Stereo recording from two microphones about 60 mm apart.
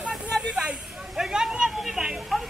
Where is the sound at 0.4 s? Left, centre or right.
Centre.